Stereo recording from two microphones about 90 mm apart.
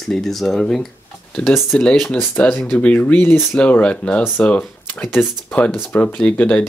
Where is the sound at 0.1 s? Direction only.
Centre (ahead or behind).